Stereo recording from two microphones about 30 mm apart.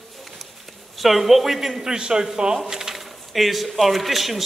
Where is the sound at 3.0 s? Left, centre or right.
Centre.